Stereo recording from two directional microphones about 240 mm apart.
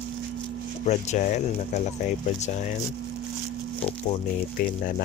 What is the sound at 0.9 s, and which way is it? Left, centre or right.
Speech, left.